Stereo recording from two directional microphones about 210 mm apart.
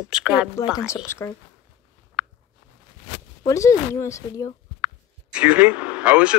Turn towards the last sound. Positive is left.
turn(degrees=-5)  # may be behind; listen again after turning